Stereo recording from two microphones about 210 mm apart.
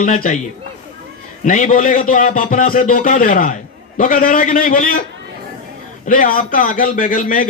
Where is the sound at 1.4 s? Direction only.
35° left (ahead or behind).